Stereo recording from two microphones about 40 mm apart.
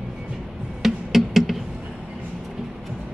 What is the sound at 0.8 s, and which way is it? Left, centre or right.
Music, centre.